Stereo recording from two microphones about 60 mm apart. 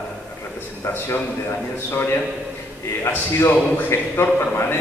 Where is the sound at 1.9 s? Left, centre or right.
Left.